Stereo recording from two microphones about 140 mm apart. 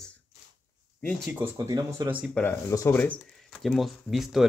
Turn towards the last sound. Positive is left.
turn(degrees=0)  # may be behind; listen again after turning